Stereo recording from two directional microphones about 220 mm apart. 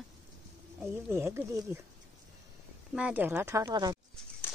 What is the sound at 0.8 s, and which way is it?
Speech, 10° right (ahead or behind).